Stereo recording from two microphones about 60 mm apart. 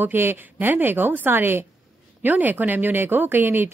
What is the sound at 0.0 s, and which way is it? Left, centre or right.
Speech, right.